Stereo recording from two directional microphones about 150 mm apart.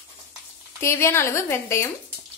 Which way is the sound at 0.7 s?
15° left (ahead or behind).